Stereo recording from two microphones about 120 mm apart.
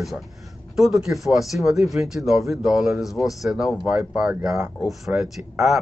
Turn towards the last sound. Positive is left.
turn(degrees=-5)  # may be behind; listen again after turning